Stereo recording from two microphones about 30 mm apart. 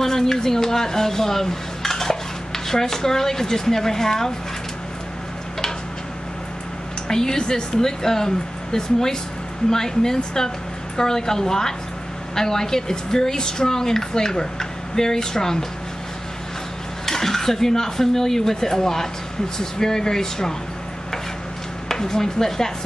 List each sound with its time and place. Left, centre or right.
0.0 s speech: centre
7.1 s a woman's voice: left
17.0 s a woman's voice: centre
21.8 s speech: centre